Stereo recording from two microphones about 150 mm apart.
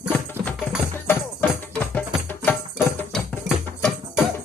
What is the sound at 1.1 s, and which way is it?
Music, 10° left (ahead or behind).